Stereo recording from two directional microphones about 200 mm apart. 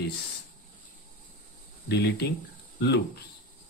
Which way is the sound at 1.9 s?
55° left (ahead or behind).